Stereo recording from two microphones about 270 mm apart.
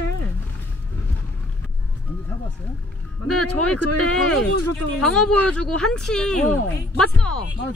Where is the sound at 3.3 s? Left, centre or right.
Left.